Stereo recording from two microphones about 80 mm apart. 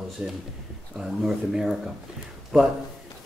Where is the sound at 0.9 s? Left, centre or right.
Centre.